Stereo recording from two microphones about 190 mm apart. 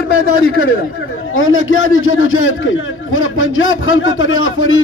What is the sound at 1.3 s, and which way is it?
A man's voice, 90° left.